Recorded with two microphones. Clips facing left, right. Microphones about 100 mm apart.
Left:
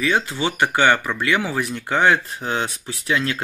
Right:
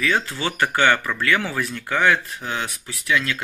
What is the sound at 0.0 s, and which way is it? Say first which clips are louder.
Speech: left 2 dB; 20° left (ahead or behind).